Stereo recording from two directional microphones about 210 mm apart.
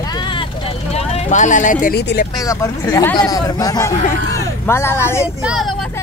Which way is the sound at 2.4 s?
15° left (ahead or behind).